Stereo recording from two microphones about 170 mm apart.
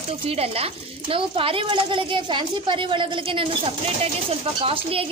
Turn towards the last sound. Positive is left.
turn(degrees=-35)  # may be behind; listen again after turning